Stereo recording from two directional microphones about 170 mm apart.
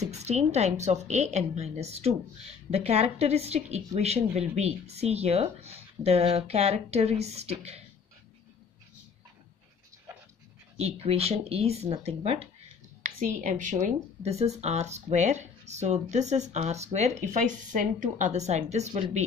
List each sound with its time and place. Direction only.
0.0 s speech: 40° right (ahead or behind)
10.8 s speech: 35° right (ahead or behind)
13.0 s speech: 50° right (ahead or behind)